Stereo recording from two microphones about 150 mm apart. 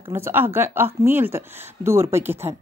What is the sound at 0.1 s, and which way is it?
A woman's voice, 15° right (ahead or behind).